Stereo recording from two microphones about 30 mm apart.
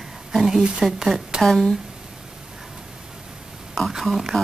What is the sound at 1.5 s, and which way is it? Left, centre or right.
Speech, centre.